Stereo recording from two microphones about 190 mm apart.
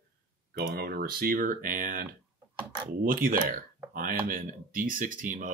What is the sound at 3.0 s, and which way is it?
Speech, 50° right (ahead or behind).